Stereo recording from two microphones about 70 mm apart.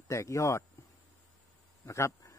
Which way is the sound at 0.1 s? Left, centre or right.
Left.